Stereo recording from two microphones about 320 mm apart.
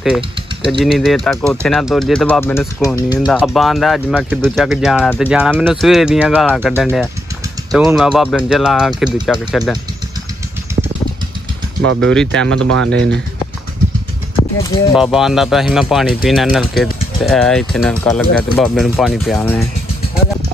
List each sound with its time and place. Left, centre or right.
0.7 s speech: centre
10.7 s vehicle: centre
11.8 s speech: right
12.1 s speech: centre
12.5 s speech: right
15.0 s speech: centre